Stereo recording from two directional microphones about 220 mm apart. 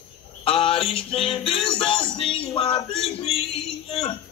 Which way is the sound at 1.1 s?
25° left (ahead or behind).